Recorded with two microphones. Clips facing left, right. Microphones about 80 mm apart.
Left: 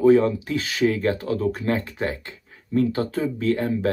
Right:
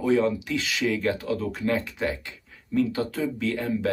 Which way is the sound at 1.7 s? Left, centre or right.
Left.